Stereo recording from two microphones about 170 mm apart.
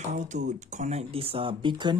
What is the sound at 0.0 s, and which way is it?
Speech, 45° right (ahead or behind).